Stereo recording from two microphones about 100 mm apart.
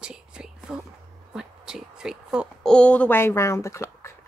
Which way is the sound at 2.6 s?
10° left (ahead or behind).